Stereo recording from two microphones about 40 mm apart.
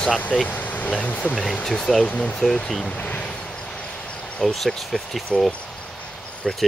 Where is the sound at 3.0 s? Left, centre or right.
Left.